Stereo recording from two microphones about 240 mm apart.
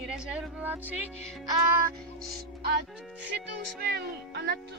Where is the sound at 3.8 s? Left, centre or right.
Right.